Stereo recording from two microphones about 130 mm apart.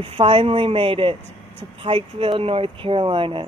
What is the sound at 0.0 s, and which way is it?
Speech, 45° right (ahead or behind).